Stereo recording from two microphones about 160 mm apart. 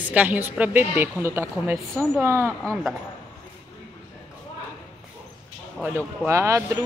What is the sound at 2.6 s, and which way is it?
Speech, 5° left (ahead or behind).